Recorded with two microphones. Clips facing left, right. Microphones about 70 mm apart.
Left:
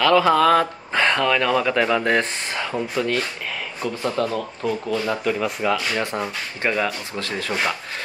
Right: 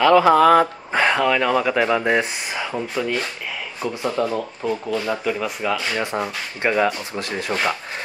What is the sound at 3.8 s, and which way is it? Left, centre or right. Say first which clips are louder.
Speech: right 1 dB; centre.